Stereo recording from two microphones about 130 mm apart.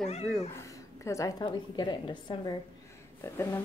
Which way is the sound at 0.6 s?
25° left (ahead or behind).